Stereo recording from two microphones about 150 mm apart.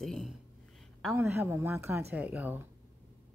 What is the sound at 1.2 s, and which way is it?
Speech, 15° right (ahead or behind).